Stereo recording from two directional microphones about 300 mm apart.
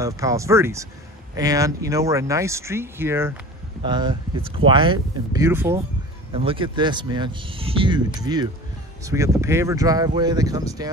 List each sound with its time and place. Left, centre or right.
0.0 s speech: centre